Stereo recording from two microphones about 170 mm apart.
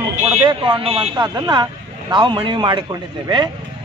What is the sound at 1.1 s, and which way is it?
A man's voice, 25° right (ahead or behind).